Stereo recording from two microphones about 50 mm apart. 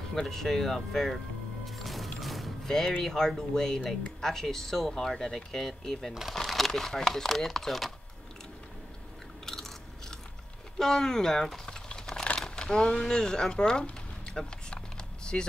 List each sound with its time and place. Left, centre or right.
0.1 s speech: centre
1.8 s music: centre
3.0 s speech: centre
10.8 s speech: centre
11.6 s typing: centre
12.4 s a sound: centre
12.6 s speech: centre
14.3 s a sound: centre
15.3 s speech: centre